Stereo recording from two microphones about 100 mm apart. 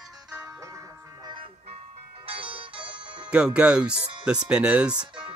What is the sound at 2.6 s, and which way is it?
Music, 60° right (ahead or behind).